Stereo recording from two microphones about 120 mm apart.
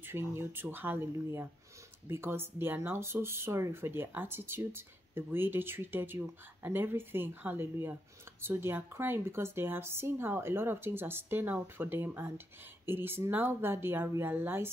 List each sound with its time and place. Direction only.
0.1 s speech: 20° right (ahead or behind)